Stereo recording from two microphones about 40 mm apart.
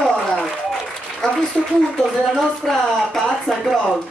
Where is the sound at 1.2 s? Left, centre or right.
Centre.